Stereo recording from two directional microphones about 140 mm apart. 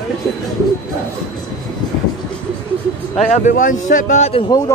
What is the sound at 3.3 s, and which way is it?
A man's voice, 60° left (ahead or behind).